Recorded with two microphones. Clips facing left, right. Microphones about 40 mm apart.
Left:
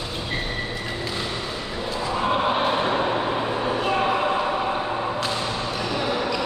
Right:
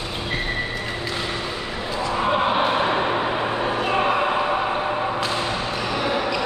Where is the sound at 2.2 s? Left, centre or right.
Centre.